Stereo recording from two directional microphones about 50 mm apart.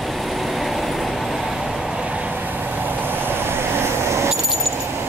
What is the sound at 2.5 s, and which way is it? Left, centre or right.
Vehicle, right.